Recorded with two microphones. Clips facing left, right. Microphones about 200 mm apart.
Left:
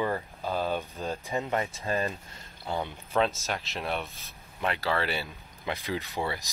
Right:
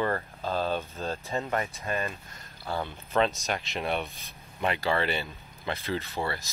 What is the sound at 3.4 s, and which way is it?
Speech, centre (ahead or behind).